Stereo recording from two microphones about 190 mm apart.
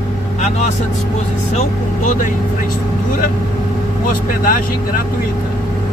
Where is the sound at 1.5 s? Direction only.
40° left (ahead or behind).